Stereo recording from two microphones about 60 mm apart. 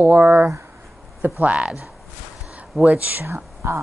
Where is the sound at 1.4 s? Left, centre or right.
Centre.